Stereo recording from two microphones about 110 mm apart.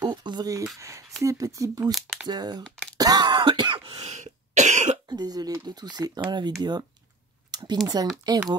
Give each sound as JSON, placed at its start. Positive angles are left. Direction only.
{"t": 0.0, "sound": "speech", "side_deg": -40}
{"t": 1.9, "sound": "speech", "side_deg": 0}
{"t": 2.2, "sound": "speech", "side_deg": -40}
{"t": 2.6, "sound": "speech", "side_deg": 5}
{"t": 3.0, "sound": "throat clearing", "side_deg": -40}
{"t": 4.0, "sound": "cough", "side_deg": -90}
{"t": 5.0, "sound": "speech", "side_deg": -40}